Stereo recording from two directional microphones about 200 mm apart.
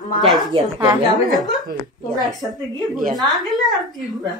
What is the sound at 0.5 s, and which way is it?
Speech, 20° right (ahead or behind).